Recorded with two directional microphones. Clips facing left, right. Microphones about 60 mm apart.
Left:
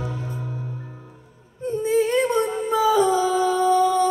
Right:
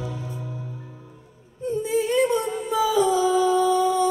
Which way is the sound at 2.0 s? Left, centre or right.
Left.